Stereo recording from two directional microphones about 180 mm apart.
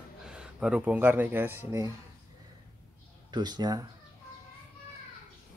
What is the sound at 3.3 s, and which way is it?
Speech, 25° right (ahead or behind).